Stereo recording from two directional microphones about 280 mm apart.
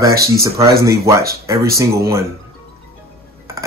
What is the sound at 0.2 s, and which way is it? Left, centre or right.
Speech, centre.